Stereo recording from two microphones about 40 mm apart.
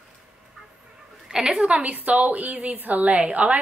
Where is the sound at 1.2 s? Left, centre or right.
Centre.